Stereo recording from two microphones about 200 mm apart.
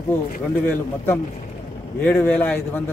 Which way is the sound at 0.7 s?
10° left (ahead or behind).